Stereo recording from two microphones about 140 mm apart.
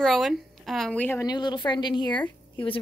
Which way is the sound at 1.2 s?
30° left (ahead or behind).